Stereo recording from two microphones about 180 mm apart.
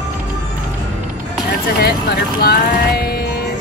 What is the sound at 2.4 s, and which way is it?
Speech, 60° left (ahead or behind).